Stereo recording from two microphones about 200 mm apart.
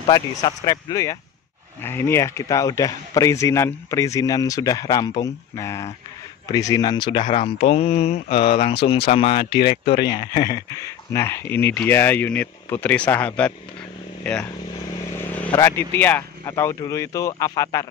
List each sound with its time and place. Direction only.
0.0 s a man's voice: 20° left (ahead or behind)
9.5 s speech: 55° left (ahead or behind)
10.0 s a man's voice: 20° left (ahead or behind)
15.1 s vehicle: 10° left (ahead or behind)
15.5 s a man's voice: 15° left (ahead or behind)